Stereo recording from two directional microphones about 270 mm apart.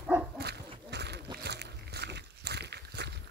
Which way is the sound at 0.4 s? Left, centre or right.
Right.